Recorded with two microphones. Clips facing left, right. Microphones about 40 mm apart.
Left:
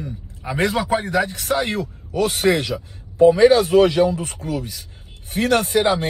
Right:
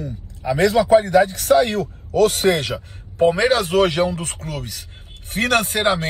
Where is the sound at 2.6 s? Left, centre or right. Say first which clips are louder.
Even; right.